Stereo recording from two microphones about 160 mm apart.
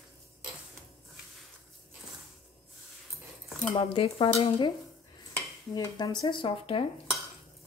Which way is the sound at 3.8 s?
35° left (ahead or behind).